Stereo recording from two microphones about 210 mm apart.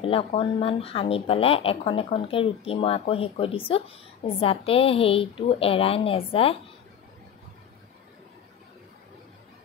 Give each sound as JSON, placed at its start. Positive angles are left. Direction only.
{"t": 0.0, "sound": "speech", "side_deg": 25}